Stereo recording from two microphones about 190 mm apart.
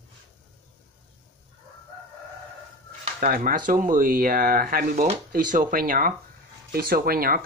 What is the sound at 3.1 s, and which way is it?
Speech, 45° right (ahead or behind).